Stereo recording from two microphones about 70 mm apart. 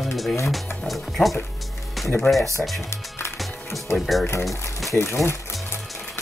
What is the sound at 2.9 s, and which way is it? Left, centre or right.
Music, left.